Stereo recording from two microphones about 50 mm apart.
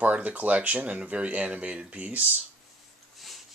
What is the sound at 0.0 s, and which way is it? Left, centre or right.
Speech, right.